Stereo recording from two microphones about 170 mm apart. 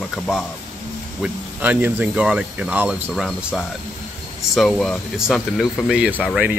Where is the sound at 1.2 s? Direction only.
10° right (ahead or behind).